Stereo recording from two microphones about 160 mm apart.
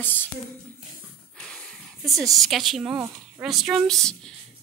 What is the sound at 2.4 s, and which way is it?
Speech, centre (ahead or behind).